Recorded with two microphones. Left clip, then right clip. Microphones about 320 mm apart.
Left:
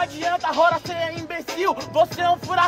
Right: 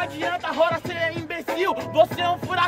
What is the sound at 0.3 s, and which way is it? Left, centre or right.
Speech, centre.